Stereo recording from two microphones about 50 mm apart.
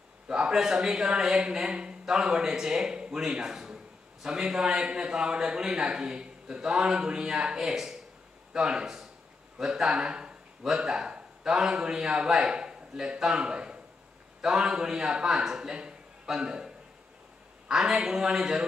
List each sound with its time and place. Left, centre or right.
0.3 s speech: centre
9.6 s a sound: centre
10.8 s a man's voice: centre